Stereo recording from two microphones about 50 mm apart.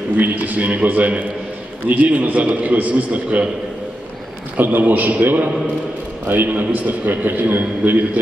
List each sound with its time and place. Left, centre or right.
0.2 s a man's voice: right
4.6 s a man's voice: right